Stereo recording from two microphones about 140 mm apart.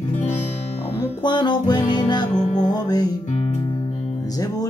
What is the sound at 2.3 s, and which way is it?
Music, 60° left (ahead or behind).